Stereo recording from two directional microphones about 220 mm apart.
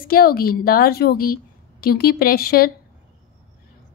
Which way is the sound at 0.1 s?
45° left (ahead or behind).